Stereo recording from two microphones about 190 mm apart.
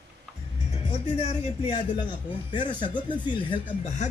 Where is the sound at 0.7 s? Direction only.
30° left (ahead or behind).